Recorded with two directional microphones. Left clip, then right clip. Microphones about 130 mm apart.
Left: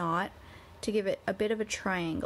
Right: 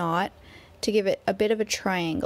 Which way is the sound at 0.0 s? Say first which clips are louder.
Right 5 dB; 25° right (ahead or behind).